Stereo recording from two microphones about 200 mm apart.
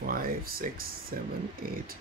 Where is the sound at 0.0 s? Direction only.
45° right (ahead or behind).